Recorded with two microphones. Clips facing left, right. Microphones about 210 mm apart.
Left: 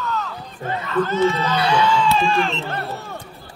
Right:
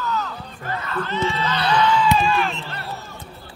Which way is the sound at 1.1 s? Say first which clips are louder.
Left 3 dB; 45° left (ahead or behind).